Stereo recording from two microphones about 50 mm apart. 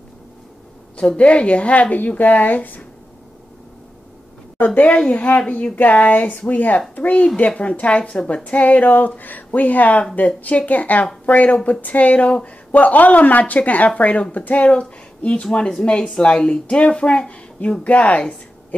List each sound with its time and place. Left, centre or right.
0.9 s speech: left
4.6 s speech: left
12.7 s speech: left
15.4 s speech: centre